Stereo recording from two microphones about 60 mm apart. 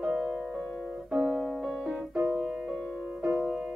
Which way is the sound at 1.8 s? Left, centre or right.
Centre.